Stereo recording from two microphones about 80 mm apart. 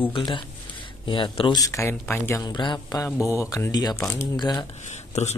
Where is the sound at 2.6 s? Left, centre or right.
Left.